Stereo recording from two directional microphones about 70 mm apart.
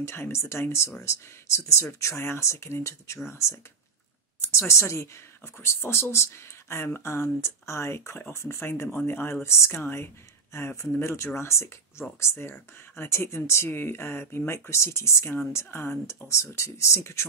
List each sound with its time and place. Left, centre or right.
0.0 s speech: left